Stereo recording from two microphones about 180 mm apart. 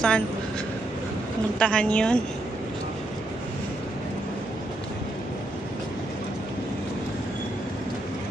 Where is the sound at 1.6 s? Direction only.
5° left (ahead or behind).